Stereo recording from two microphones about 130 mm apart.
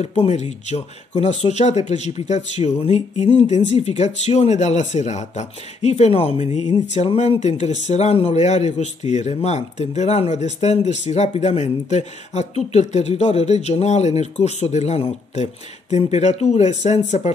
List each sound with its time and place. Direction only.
0.0 s speech: 60° left (ahead or behind)